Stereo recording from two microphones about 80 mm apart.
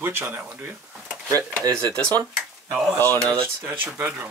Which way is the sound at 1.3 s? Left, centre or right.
Right.